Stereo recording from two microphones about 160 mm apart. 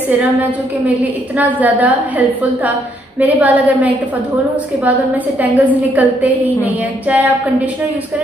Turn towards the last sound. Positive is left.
turn(degrees=-10)  # may be behind; listen again after turning